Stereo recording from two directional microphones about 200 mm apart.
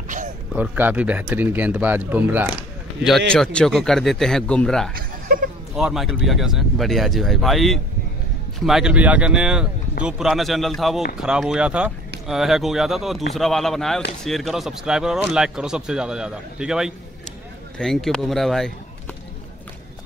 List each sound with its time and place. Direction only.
0.6 s speech: 10° right (ahead or behind)
3.3 s speech: 5° left (ahead or behind)
4.9 s chuckle: 45° right (ahead or behind)
5.8 s speech: 5° right (ahead or behind)